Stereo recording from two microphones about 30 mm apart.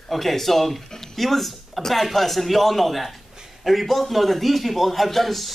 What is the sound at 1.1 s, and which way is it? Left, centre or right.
A man's voice, centre.